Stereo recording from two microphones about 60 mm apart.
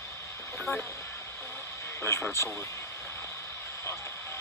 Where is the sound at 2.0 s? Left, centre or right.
Left.